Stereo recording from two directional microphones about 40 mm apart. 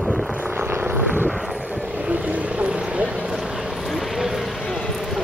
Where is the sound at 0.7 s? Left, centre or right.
Right.